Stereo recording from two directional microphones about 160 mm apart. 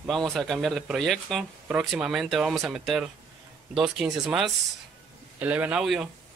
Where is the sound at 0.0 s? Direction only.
Centre (ahead or behind).